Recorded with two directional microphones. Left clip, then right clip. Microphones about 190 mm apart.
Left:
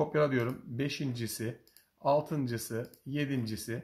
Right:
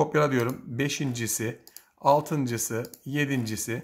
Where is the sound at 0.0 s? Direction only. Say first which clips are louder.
Right 5 dB; 25° right (ahead or behind).